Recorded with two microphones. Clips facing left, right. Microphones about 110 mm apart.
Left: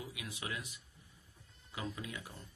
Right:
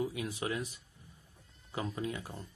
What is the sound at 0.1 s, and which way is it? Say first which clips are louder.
Speech: right 8 dB; 40° right (ahead or behind).